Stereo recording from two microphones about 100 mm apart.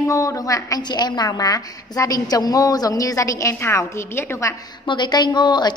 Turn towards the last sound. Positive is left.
turn(degrees=50)  # may be behind; listen again after turning